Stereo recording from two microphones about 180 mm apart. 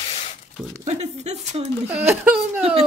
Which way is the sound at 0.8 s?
40° right (ahead or behind).